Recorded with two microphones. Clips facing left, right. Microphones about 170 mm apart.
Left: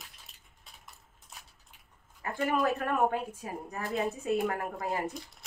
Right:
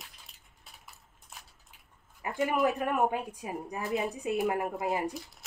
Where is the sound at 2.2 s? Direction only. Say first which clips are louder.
Right 1 dB; 15° right (ahead or behind).